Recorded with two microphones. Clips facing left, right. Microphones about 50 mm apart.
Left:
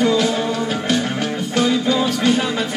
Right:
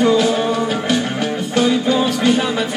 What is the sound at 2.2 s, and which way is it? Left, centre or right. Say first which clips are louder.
Music: right 2 dB; centre.